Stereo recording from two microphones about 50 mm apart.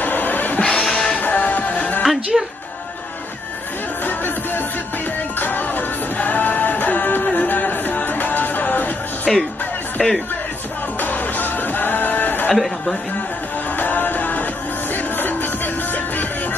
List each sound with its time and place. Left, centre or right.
0.0 s music: left
0.7 s music: centre
1.2 s music: left
2.0 s speech: centre
4.0 s music: left
9.3 s music: centre
10.0 s speech: centre
11.0 s music: left
12.5 s speech: centre
13.7 s music: left